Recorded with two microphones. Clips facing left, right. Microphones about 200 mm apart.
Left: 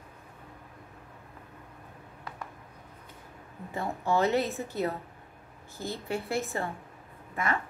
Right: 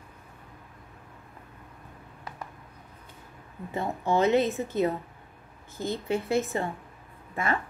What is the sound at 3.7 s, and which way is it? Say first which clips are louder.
A woman's voice: right 2 dB; 20° right (ahead or behind).